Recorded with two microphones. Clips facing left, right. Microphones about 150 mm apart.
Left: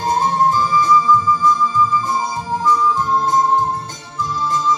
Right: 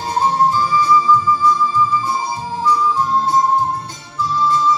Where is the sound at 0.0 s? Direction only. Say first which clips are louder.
Even; 45° left (ahead or behind).